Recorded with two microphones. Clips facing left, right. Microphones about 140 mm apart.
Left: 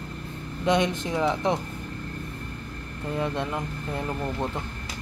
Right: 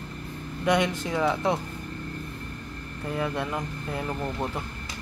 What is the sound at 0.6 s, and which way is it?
Speech, 20° left (ahead or behind).